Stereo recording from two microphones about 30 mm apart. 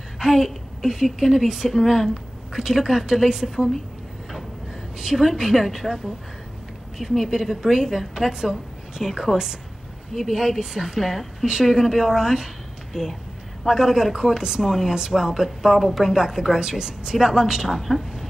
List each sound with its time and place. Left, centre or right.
0.2 s a woman's voice: centre
4.9 s a woman's voice: centre
13.7 s a woman's voice: centre
14.7 s a woman's voice: centre
15.0 s a woman's voice: centre
15.8 s a woman's voice: centre
16.2 s a woman's voice: centre
16.5 s a woman's voice: right
17.7 s a woman's voice: centre